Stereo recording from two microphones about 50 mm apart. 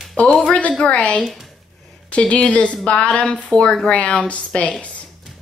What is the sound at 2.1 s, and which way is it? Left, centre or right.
Speech, left.